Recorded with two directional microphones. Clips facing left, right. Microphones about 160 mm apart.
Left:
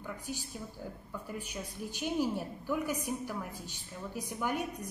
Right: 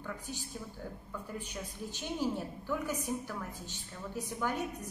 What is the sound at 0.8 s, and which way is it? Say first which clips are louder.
A woman's voice: left 1 dB; 10° left (ahead or behind).